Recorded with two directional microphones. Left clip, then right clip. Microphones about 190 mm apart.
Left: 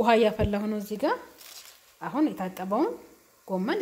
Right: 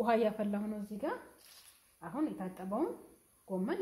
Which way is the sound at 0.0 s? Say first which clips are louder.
Left 9 dB; 35° left (ahead or behind).